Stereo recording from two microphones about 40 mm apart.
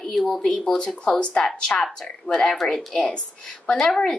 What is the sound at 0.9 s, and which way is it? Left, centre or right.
Speech, left.